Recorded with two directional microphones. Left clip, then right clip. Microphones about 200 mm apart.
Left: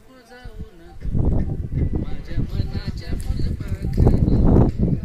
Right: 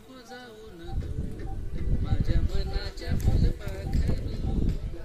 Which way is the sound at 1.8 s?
45° right (ahead or behind).